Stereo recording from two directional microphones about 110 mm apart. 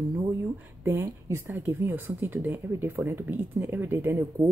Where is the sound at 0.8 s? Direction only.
25° right (ahead or behind).